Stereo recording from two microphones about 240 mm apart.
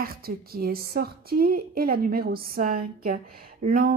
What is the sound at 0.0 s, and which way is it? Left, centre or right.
A woman's voice, right.